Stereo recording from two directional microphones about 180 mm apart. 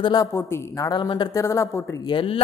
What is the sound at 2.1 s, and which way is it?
Speech, 30° left (ahead or behind).